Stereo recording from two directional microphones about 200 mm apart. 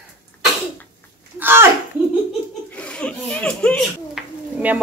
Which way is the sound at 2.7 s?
5° left (ahead or behind).